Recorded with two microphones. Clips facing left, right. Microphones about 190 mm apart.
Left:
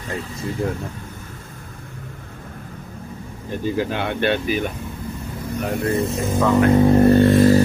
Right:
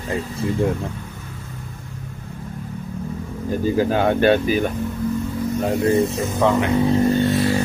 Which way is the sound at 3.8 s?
40° right (ahead or behind).